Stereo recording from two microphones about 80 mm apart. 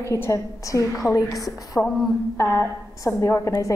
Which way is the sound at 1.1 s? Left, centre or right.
Left.